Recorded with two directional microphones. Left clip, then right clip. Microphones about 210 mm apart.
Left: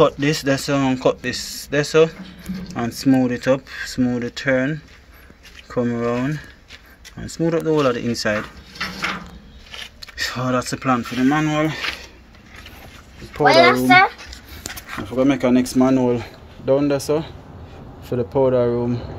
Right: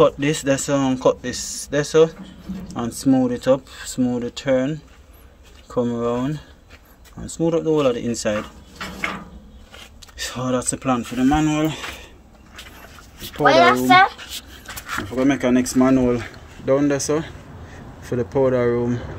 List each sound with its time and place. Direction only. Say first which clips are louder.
0.0 s speech: even; centre (ahead or behind)
9.9 s speech: left 4 dB; centre (ahead or behind)
13.8 s speech: even; 45° left (ahead or behind)
15.0 s speech: left 2 dB; 10° left (ahead or behind)